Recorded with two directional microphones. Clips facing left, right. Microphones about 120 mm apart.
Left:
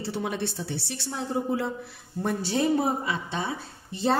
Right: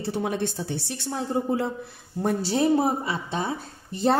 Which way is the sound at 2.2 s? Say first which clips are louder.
Right 3 dB; 35° right (ahead or behind).